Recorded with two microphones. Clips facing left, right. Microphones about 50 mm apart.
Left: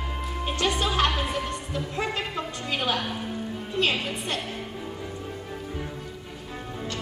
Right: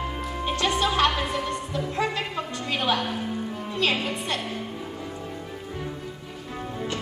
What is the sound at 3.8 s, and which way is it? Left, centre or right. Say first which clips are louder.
Music: right 1 dB; right.